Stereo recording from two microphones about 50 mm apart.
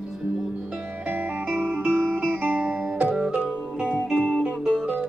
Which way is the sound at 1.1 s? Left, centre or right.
Right.